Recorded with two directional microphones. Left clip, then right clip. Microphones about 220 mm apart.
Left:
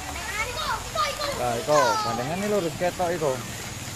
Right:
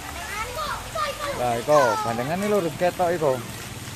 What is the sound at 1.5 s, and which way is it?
A child's voice, 20° right (ahead or behind).